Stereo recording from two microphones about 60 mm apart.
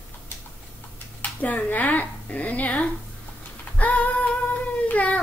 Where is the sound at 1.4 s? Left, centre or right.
Left.